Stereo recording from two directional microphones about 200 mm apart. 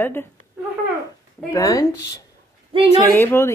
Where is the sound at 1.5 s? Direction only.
15° left (ahead or behind).